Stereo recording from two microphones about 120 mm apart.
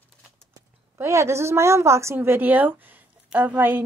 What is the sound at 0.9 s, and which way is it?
A woman's voice, 25° right (ahead or behind).